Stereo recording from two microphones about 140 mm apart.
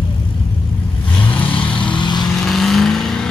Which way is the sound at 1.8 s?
35° left (ahead or behind).